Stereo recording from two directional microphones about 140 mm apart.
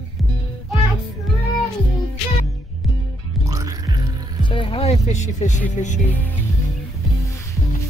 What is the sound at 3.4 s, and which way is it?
Music, 25° right (ahead or behind).